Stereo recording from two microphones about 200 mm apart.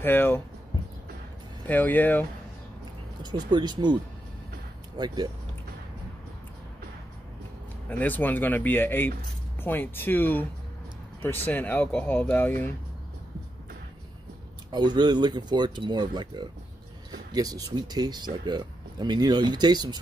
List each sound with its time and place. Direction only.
0.0 s speech: 10° left (ahead or behind)
1.7 s speech: 10° left (ahead or behind)
3.2 s speech: 20° right (ahead or behind)
7.9 s speech: 10° left (ahead or behind)
14.7 s speech: 20° right (ahead or behind)